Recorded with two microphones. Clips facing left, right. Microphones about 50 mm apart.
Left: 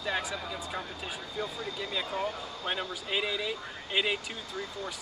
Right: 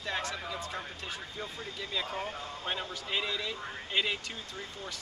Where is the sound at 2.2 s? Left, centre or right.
Right.